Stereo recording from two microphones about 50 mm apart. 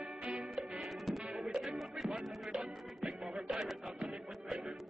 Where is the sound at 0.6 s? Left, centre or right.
Centre.